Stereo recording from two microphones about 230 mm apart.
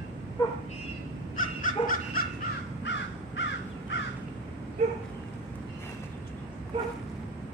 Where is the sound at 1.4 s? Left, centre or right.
Left.